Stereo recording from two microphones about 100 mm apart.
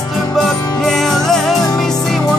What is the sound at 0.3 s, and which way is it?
Music, 5° left (ahead or behind).